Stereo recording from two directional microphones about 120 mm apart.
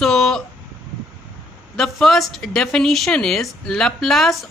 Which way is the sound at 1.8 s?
Centre (ahead or behind).